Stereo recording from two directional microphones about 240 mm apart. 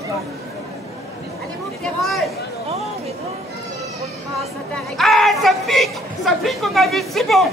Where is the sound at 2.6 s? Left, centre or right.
Right.